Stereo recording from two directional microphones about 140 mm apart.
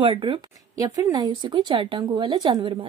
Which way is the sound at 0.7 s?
25° right (ahead or behind).